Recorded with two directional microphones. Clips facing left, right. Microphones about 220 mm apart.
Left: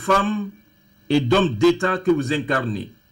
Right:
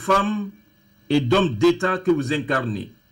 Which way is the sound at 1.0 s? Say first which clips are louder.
Left 1 dB; centre (ahead or behind).